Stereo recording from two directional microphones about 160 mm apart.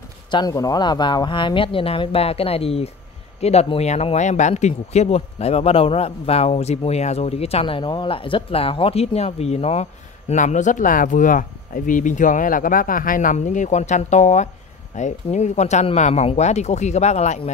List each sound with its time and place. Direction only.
0.3 s speech: 25° left (ahead or behind); by 17.5 s 45° left (ahead or behind)